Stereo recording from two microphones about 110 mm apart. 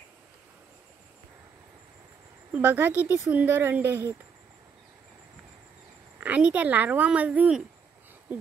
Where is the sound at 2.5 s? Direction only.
15° right (ahead or behind).